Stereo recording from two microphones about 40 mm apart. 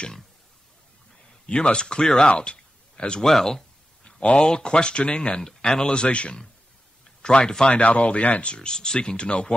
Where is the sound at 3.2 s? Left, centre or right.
Centre.